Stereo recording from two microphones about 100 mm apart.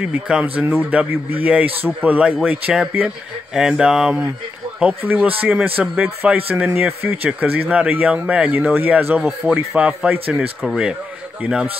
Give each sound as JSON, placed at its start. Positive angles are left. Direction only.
{"t": 0.0, "sound": "speech", "side_deg": -10}